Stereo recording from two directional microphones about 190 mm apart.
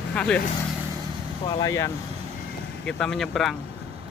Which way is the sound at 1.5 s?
20° left (ahead or behind).